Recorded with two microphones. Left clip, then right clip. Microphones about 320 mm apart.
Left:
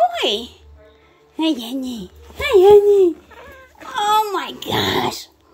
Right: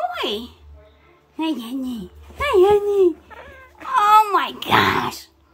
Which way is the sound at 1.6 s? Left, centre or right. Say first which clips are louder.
Left 2 dB; centre.